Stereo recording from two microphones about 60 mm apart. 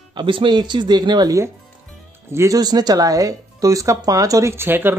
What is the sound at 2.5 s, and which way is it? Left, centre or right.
Speech, right.